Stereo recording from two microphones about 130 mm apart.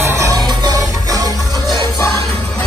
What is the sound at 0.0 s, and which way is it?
Music, 25° right (ahead or behind).